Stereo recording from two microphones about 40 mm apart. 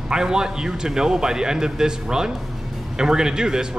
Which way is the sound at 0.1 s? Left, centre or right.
Centre.